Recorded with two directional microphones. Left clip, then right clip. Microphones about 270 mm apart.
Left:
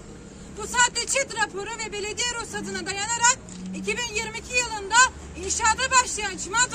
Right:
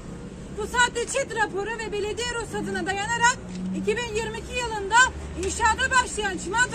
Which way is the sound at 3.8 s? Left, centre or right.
Centre.